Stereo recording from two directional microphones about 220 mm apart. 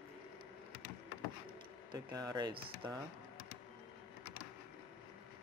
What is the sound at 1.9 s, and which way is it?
Speech, 20° right (ahead or behind).